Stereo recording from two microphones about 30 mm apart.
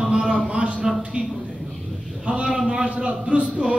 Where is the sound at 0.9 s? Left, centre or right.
Centre.